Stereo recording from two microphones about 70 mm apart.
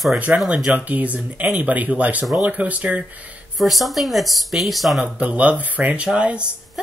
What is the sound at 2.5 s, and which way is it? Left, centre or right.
Speech, right.